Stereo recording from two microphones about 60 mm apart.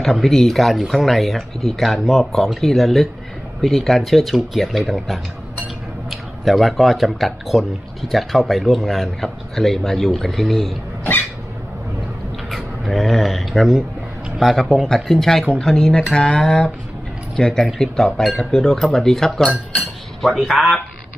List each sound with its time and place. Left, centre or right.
0.0 s speech: centre
12.4 s a sound: centre
14.4 s speech: centre